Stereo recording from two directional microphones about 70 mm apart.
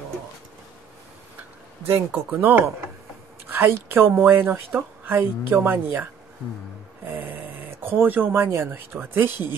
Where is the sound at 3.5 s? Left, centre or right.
Right.